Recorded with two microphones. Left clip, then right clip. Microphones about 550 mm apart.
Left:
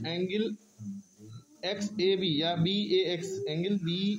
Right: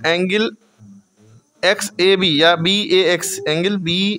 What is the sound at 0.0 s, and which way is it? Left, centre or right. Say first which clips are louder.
Speech: right 15 dB; left.